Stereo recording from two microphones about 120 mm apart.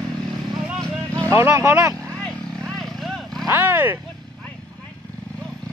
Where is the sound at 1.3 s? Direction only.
20° right (ahead or behind).